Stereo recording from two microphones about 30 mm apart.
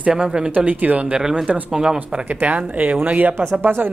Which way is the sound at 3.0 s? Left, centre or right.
Right.